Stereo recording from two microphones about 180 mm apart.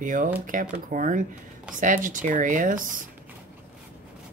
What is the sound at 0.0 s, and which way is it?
Speech, 45° right (ahead or behind).